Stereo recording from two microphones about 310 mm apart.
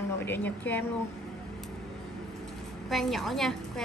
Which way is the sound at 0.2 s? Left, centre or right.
Centre.